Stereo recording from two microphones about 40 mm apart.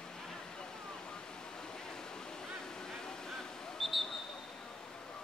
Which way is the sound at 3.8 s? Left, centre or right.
Centre.